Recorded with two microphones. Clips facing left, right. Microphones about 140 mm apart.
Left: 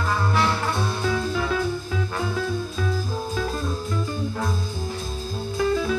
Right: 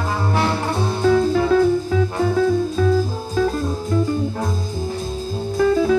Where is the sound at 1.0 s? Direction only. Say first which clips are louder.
Right 13 dB; 40° right (ahead or behind).